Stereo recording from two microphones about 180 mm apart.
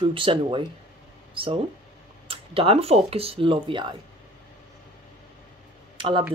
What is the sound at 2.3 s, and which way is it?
Speech, 30° right (ahead or behind).